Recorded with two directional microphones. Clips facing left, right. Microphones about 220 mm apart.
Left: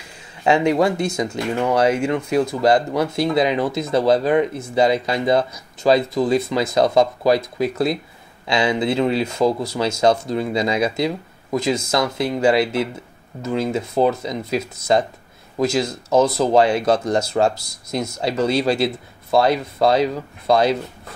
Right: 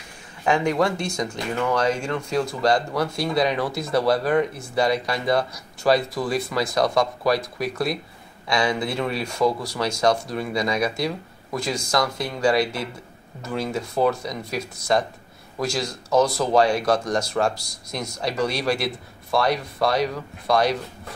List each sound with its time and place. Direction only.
0.4 s speech: 20° left (ahead or behind)